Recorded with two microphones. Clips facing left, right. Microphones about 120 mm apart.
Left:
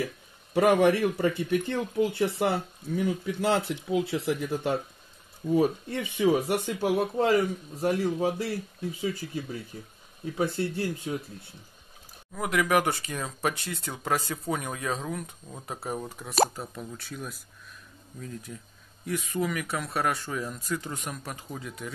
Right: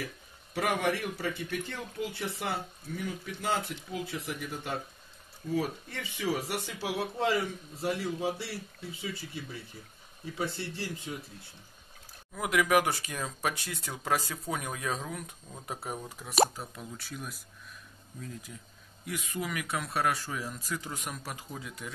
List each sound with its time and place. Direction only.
0.6 s speech: 60° left (ahead or behind)
12.4 s speech: centre (ahead or behind)
19.0 s speech: centre (ahead or behind)